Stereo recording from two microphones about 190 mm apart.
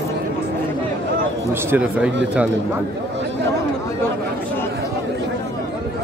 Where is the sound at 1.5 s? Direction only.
10° right (ahead or behind).